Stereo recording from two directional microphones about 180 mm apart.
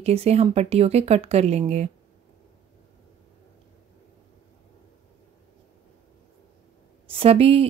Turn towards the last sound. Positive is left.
turn(degrees=-35)  # may be behind; listen again after turning